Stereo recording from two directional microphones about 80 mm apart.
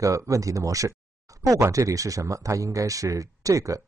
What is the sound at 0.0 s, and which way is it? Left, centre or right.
Speech, right.